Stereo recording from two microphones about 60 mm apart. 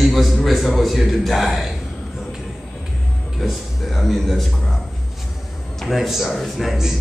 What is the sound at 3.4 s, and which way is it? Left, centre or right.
Speech, centre.